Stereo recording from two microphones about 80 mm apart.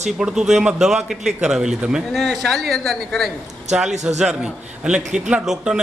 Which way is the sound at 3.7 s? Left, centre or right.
Centre.